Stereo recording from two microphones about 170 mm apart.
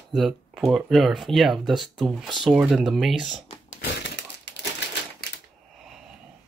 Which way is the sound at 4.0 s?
90° left.